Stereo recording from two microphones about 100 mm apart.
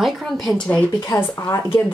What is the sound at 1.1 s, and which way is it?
Speech, 40° left (ahead or behind).